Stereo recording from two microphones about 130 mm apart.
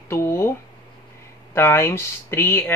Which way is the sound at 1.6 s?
15° left (ahead or behind).